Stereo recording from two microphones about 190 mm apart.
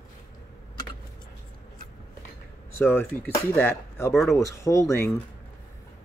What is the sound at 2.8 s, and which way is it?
Speech, 10° left (ahead or behind).